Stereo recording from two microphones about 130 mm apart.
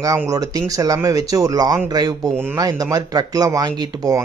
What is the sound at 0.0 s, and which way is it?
Speech, 25° right (ahead or behind).